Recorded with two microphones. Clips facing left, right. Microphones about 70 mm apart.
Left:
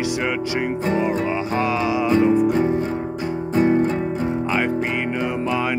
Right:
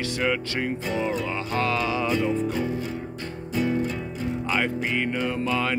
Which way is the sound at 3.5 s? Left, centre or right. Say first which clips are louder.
Left 7 dB; left.